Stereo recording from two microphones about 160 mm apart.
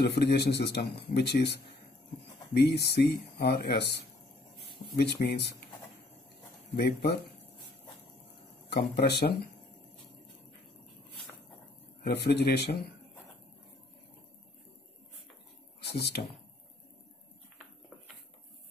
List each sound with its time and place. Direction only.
0.0 s speech: 90° left
2.5 s speech: 90° left
4.9 s speech: 90° left
8.6 s speech: 85° left
12.0 s speech: 90° left
15.8 s speech: 90° left